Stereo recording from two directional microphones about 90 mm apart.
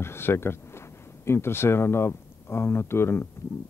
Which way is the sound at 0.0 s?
25° left (ahead or behind).